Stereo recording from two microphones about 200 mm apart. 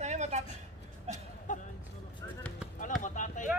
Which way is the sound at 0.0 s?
35° right (ahead or behind).